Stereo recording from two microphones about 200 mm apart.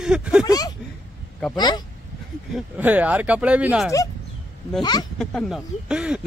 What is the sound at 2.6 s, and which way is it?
Speech, 10° right (ahead or behind).